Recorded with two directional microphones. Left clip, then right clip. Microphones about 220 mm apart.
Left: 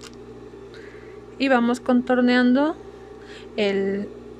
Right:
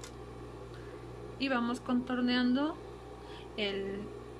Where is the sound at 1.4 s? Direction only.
35° left (ahead or behind).